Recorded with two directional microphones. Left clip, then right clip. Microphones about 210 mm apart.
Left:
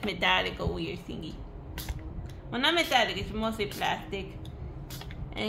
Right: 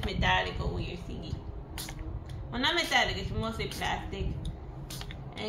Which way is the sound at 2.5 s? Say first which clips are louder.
Left 2 dB; 55° left (ahead or behind).